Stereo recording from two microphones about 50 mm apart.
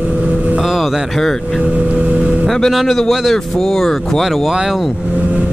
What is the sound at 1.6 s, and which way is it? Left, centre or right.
Vehicle, right.